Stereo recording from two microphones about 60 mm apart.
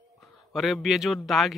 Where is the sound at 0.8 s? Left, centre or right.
Centre.